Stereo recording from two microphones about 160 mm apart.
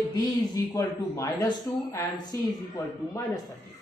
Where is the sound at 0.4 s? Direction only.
20° left (ahead or behind).